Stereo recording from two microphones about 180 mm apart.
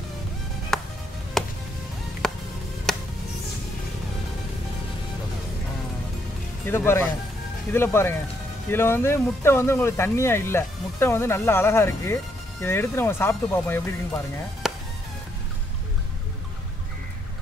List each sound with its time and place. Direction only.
0.7 s music: centre (ahead or behind)
6.7 s speech: 15° left (ahead or behind)
14.6 s music: centre (ahead or behind)